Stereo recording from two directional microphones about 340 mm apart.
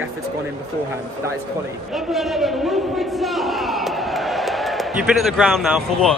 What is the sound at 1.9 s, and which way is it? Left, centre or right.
A man's voice, centre.